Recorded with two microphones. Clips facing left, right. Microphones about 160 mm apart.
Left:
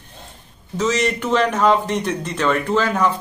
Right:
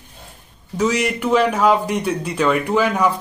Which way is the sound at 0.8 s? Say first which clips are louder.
Right 1 dB; 10° right (ahead or behind).